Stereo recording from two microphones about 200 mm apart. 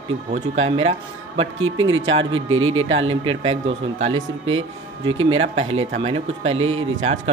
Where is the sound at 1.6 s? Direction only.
75° right (ahead or behind).